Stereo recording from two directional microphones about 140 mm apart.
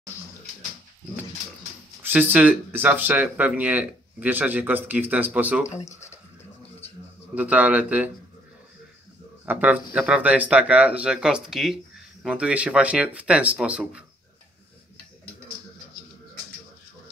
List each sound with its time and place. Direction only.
2.0 s speech: 15° right (ahead or behind)
5.7 s speech: 45° left (ahead or behind)
7.3 s speech: 10° right (ahead or behind)
9.5 s speech: 10° right (ahead or behind)